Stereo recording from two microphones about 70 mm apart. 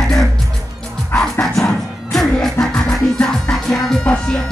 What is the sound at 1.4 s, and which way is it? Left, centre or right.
Music, centre.